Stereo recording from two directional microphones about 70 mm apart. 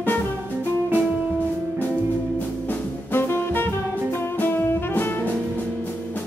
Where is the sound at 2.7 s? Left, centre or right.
Left.